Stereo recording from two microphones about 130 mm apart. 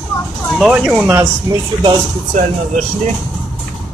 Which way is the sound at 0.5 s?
5° right (ahead or behind).